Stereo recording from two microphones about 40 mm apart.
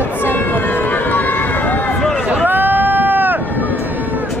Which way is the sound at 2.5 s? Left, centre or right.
Right.